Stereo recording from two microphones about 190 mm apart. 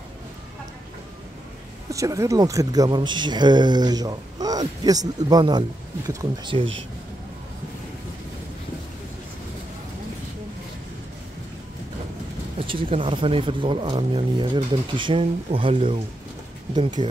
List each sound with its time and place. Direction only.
1.9 s speech: 15° right (ahead or behind)
12.5 s speech: 30° right (ahead or behind)